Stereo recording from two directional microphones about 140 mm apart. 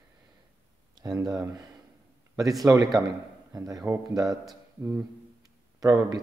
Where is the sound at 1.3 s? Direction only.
25° right (ahead or behind).